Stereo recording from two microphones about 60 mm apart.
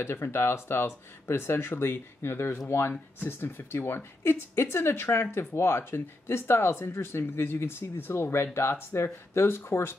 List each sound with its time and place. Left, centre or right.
0.0 s speech: left